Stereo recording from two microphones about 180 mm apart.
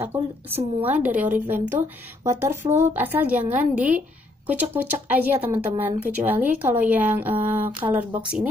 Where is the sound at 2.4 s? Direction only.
15° right (ahead or behind).